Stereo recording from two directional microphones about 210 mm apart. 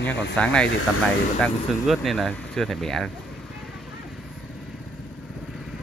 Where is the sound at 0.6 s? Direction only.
90° left.